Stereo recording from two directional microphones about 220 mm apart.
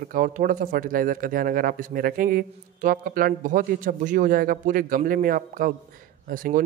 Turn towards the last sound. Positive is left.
turn(degrees=-40)  # may be behind; listen again after turning